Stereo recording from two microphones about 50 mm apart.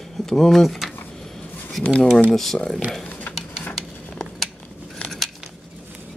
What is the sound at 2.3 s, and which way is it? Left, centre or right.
Speech, centre.